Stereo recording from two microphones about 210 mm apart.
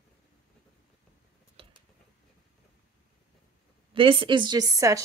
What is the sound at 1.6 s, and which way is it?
Mechanisms, 25° right (ahead or behind).